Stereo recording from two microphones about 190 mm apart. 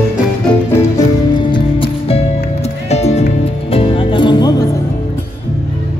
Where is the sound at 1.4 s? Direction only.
25° left (ahead or behind).